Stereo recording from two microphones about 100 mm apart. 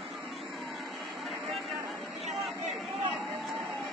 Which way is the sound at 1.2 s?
Centre (ahead or behind).